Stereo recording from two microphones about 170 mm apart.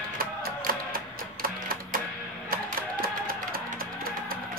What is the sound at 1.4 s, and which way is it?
Music, 55° right (ahead or behind).